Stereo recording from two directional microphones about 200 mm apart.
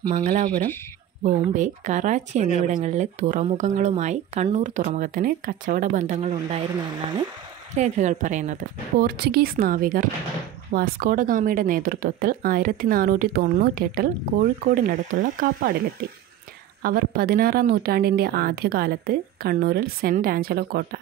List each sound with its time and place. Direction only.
0.1 s speech: 40° right (ahead or behind)
7.7 s speech: 35° right (ahead or behind)
9.0 s speech: 55° right (ahead or behind)
16.8 s speech: 50° right (ahead or behind)